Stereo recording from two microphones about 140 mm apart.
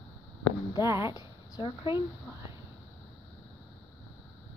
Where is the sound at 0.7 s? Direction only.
20° right (ahead or behind).